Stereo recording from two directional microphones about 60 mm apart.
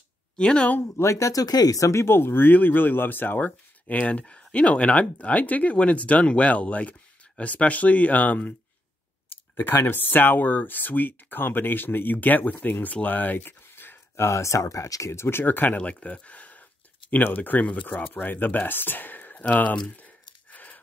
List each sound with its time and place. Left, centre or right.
0.4 s speech: centre
0.7 s speech: left
1.1 s speech: left
2.0 s speech: left
9.3 s clicking: left
9.8 s speech: left
15.4 s speech: left
20.5 s gasp: left